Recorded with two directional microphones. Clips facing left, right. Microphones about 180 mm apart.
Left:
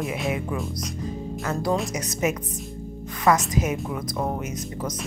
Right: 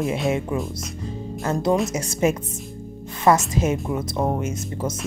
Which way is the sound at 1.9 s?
30° right (ahead or behind).